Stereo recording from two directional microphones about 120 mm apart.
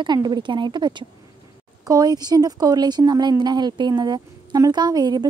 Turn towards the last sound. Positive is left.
turn(degrees=-35)  # may be behind; listen again after turning